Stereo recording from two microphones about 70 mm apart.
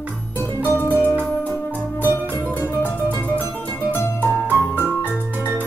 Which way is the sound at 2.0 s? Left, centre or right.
Right.